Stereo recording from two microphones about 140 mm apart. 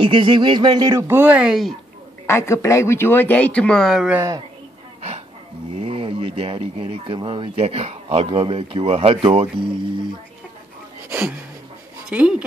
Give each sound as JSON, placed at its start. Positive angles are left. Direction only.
{"t": 0.0, "sound": "speech", "side_deg": -35}
{"t": 2.2, "sound": "speech", "side_deg": 20}
{"t": 5.9, "sound": "speech", "side_deg": -40}
{"t": 11.1, "sound": "a sound", "side_deg": -15}
{"t": 12.1, "sound": "speech", "side_deg": -10}